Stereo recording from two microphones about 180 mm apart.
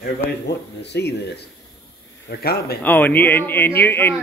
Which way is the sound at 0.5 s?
70° left (ahead or behind).